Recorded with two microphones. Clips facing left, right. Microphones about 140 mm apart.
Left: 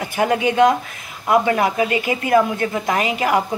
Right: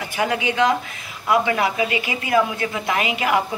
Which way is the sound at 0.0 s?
45° left (ahead or behind).